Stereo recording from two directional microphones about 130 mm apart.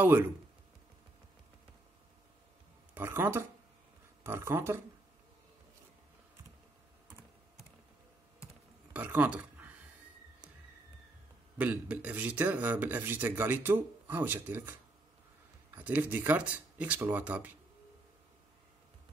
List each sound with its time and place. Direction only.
2.9 s speech: 15° right (ahead or behind)
8.9 s speech: 10° right (ahead or behind)
11.5 s speech: 10° right (ahead or behind)